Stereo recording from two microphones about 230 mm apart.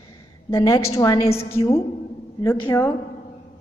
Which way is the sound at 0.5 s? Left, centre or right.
Centre.